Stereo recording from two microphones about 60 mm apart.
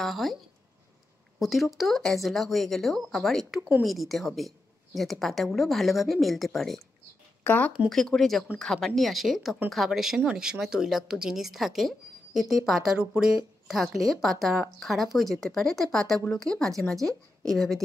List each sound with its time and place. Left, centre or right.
0.0 s a woman's voice: centre
1.4 s a woman's voice: centre
7.4 s speech: left
7.9 s a woman's voice: centre
12.9 s speech: centre
13.7 s a woman's voice: centre